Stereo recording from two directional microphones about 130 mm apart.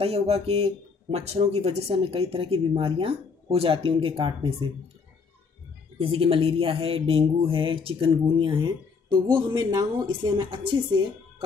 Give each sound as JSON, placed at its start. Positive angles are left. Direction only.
{"t": 0.0, "sound": "speech", "side_deg": -50}
{"t": 5.9, "sound": "speech", "side_deg": -45}
{"t": 10.3, "sound": "speech", "side_deg": -40}